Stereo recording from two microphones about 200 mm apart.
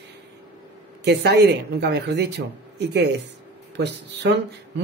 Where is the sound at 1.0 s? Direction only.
55° right (ahead or behind).